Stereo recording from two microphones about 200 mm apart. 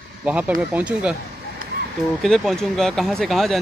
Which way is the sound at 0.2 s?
5° right (ahead or behind).